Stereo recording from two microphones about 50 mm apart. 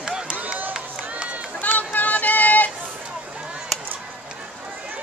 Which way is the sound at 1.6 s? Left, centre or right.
Left.